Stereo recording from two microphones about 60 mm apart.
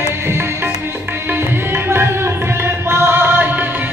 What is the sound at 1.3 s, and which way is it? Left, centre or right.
Tabla, right.